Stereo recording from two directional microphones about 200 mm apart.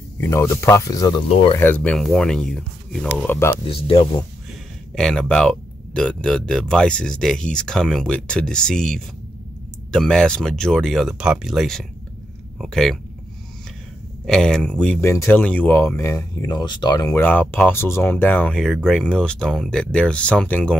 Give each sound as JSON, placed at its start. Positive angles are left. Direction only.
{"t": 0.2, "sound": "speech", "side_deg": 15}
{"t": 1.6, "sound": "speech", "side_deg": 10}
{"t": 3.6, "sound": "speech", "side_deg": 25}
{"t": 4.9, "sound": "speech", "side_deg": 5}
{"t": 14.2, "sound": "speech", "side_deg": 5}